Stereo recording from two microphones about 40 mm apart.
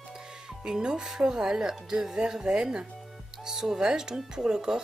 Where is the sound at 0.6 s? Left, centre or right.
Right.